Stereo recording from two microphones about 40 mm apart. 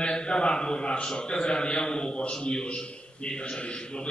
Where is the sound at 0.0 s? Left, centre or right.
Left.